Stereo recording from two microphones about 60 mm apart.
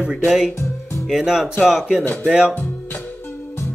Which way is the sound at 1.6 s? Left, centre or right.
Centre.